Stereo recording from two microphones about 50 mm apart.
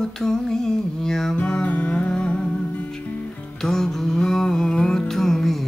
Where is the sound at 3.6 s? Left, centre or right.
Centre.